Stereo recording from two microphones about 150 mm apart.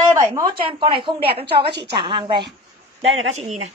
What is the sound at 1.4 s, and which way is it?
Speech, 90° right.